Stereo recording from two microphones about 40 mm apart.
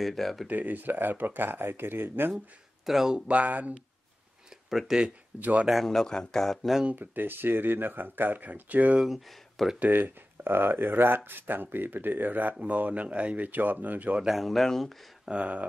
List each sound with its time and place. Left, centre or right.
0.0 s speech: centre
0.5 s speech: right
2.3 s speech: centre
3.3 s speech: right
4.6 s speech: centre
5.3 s speech: right
5.9 s speech: centre
7.0 s speech: right
8.9 s speech: centre
9.8 s speech: right
14.2 s speech: centre
15.2 s speech: right